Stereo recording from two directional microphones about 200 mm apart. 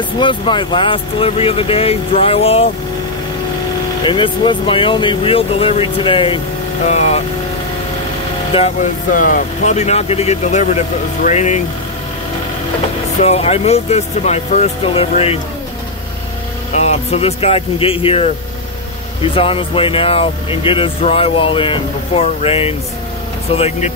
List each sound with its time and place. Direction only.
0.2 s speech: 25° left (ahead or behind)
4.0 s speech: 25° left (ahead or behind)
8.5 s speech: 30° left (ahead or behind)
9.1 s speech: 40° left (ahead or behind)
13.2 s speech: 30° left (ahead or behind)
16.7 s speech: 35° left (ahead or behind)